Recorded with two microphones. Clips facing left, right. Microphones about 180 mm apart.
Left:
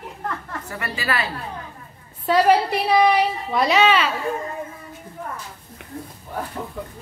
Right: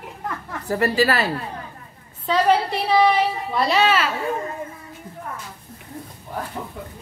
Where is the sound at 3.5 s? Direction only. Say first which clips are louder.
Left 2 dB; centre (ahead or behind).